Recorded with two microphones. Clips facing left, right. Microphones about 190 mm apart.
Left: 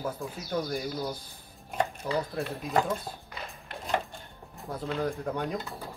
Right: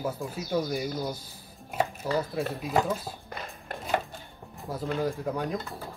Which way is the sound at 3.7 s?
45° right (ahead or behind).